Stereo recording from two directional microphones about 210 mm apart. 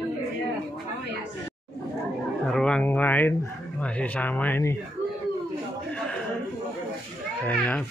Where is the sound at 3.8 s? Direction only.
5° left (ahead or behind).